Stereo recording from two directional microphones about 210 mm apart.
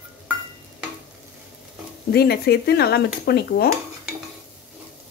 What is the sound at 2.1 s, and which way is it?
Speech, 50° left (ahead or behind).